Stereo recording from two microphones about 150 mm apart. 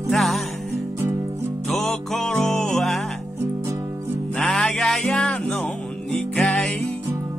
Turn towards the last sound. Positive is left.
turn(degrees=5)  # may be behind; listen again after turning